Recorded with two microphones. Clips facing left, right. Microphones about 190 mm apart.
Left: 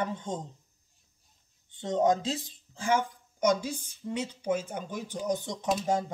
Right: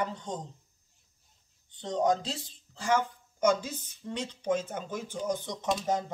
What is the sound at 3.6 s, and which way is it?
Speech, 10° left (ahead or behind).